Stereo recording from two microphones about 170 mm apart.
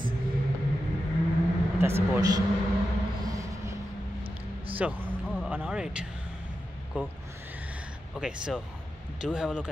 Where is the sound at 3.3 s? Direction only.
20° right (ahead or behind).